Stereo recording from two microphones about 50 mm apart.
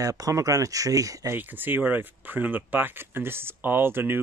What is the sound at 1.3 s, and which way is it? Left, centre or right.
Speech, right.